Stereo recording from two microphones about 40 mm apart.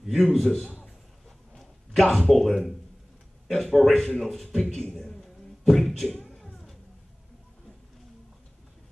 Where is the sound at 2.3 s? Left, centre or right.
Centre.